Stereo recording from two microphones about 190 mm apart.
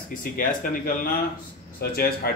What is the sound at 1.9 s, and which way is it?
Speech, 50° left (ahead or behind).